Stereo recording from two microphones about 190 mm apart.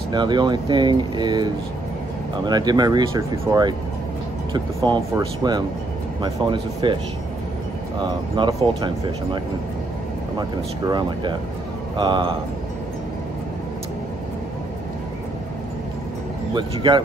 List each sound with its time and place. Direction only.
0.1 s speech: 25° right (ahead or behind)
8.5 s speech: 25° right (ahead or behind)
10.9 s speech: 25° right (ahead or behind)
16.5 s speech: 25° right (ahead or behind)